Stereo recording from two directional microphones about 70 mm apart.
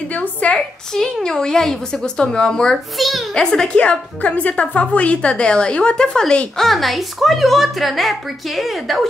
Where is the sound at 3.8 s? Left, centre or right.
Centre.